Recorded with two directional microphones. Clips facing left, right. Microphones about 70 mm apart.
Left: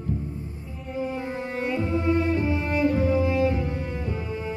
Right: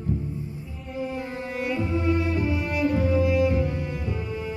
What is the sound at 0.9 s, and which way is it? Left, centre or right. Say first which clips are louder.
Music: left 1 dB; left.